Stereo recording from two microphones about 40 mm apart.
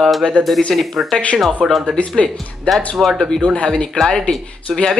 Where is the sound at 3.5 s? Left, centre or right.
Left.